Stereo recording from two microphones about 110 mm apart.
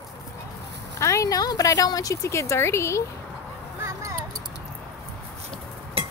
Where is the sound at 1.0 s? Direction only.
30° left (ahead or behind).